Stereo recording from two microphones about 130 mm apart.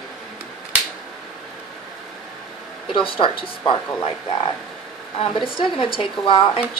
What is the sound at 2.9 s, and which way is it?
A woman's voice, 40° left (ahead or behind).